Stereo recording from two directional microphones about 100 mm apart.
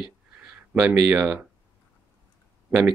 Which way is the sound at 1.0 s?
20° right (ahead or behind).